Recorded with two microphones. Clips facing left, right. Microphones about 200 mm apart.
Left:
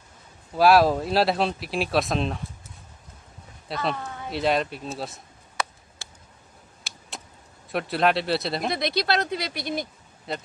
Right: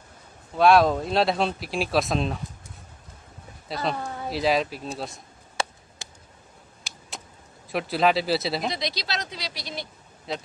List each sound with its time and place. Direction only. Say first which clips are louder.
0.6 s speech: even; 5° left (ahead or behind)
3.6 s speech: even; centre (ahead or behind)
5.6 s chop: right 1 dB; 30° right (ahead or behind)
6.0 s a sound: right 2 dB; 20° right (ahead or behind)
7.7 s speech: right 1 dB; centre (ahead or behind)
8.6 s speech: left 5 dB; 55° left (ahead or behind)
10.3 s speech: even; centre (ahead or behind)